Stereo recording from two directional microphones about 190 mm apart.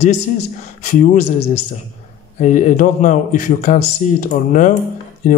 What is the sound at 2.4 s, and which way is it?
A man's voice, 40° left (ahead or behind).